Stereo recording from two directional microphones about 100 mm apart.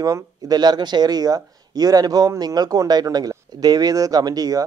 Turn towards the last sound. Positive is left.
turn(degrees=-40)  # may be behind; listen again after turning